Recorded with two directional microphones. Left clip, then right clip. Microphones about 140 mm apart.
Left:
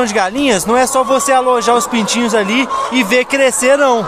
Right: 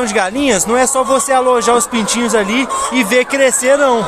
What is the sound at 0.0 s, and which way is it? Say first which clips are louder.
Speech: left 1 dB; 10° left (ahead or behind).